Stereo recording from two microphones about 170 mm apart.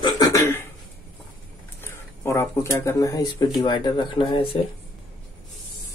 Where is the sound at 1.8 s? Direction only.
15° left (ahead or behind).